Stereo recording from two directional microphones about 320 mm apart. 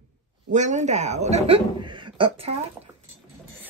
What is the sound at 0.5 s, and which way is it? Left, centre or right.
A woman's voice, right.